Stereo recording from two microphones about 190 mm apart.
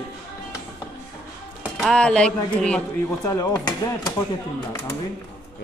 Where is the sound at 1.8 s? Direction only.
5° left (ahead or behind).